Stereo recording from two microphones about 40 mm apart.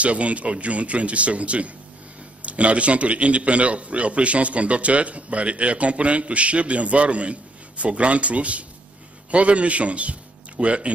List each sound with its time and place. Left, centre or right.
0.0 s a man's voice: right